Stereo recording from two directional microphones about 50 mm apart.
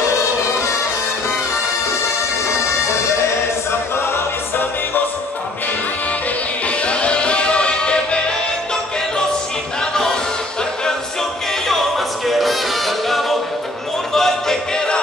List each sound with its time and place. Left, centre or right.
6.8 s music: left
12.3 s music: centre